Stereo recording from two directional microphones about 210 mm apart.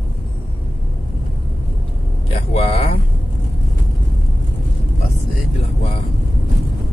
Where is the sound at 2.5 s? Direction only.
25° left (ahead or behind).